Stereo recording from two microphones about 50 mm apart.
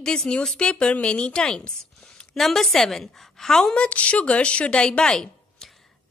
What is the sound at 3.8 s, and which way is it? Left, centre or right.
A woman's voice, left.